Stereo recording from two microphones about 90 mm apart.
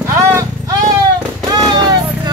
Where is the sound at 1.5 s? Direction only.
50° right (ahead or behind).